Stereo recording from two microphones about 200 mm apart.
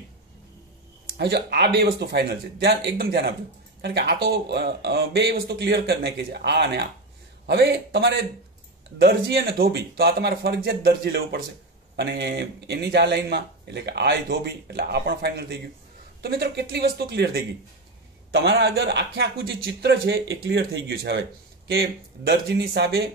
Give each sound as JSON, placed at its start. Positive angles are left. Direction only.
{"t": 1.1, "sound": "speech", "side_deg": -55}